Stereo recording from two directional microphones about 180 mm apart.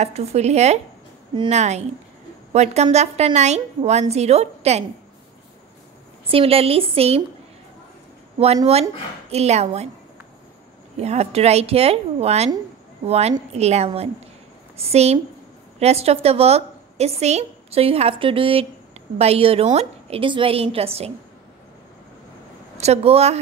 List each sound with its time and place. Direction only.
0.0 s a woman's voice: 35° right (ahead or behind)
6.3 s a woman's voice: 35° right (ahead or behind)
9.3 s a woman's voice: 35° right (ahead or behind)
11.0 s a woman's voice: 35° right (ahead or behind)
22.8 s a woman's voice: 35° right (ahead or behind)